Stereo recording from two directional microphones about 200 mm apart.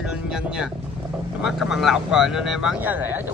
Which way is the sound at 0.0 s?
5° right (ahead or behind).